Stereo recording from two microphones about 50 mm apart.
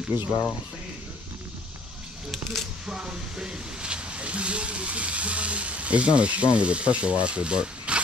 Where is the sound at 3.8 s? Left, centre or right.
Right.